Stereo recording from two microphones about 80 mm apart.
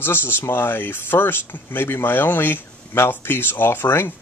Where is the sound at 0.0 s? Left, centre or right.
Left.